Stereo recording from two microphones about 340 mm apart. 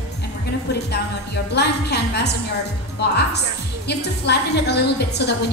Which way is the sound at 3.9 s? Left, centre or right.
Left.